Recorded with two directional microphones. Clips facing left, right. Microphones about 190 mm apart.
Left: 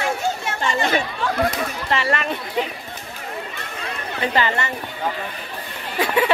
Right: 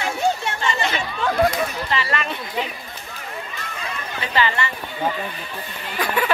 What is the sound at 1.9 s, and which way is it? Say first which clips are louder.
Speech: left 2 dB; 50° left (ahead or behind).